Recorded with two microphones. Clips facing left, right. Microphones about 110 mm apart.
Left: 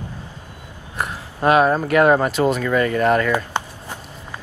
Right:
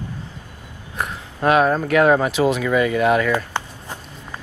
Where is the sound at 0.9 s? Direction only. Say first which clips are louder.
Left 1 dB; centre (ahead or behind).